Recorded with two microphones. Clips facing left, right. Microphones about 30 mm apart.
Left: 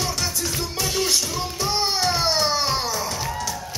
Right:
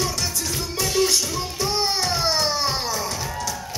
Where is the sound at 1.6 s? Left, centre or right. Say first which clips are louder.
Even; left.